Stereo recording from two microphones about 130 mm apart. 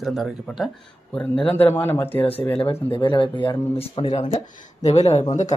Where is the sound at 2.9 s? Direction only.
40° left (ahead or behind); by 5.2 s 55° left (ahead or behind).